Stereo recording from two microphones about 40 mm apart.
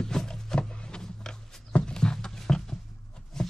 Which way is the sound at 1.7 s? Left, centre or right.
Left.